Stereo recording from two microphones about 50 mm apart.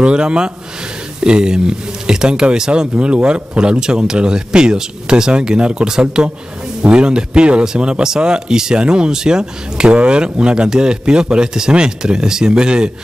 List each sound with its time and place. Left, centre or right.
0.0 s speech: centre